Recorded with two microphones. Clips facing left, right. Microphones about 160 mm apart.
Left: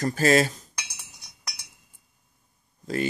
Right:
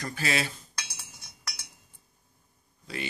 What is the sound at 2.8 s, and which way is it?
Speech, 45° left (ahead or behind).